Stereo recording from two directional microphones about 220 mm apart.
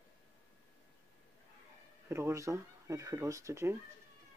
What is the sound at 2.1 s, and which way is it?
Speech, 10° right (ahead or behind).